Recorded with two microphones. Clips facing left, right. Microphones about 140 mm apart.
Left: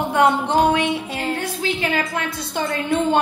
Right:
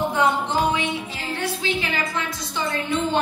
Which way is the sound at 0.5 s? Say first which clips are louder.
Left 5 dB; 60° left (ahead or behind).